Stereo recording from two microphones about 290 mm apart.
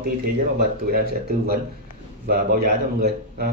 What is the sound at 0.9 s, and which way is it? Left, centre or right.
Speech, right.